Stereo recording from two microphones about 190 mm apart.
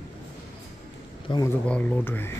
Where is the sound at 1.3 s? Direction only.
25° left (ahead or behind).